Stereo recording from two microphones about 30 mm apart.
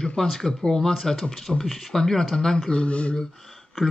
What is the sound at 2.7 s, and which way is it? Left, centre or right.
Speech, left.